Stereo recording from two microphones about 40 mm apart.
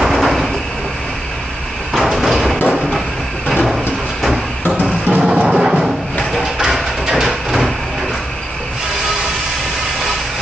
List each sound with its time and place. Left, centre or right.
0.0 s train: centre
2.0 s a sound: centre
3.6 s train: centre
4.8 s music: right; by 7.7 s centre